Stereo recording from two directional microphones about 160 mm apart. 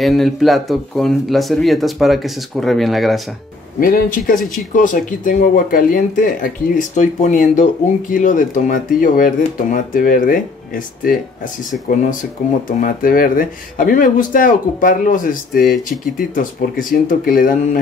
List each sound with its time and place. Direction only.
0.0 s speech: centre (ahead or behind)
3.8 s speech: 60° left (ahead or behind)
12.6 s speech: 60° left (ahead or behind)